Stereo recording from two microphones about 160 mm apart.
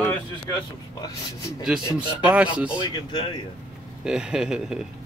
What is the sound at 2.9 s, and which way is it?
Speech, 30° left (ahead or behind).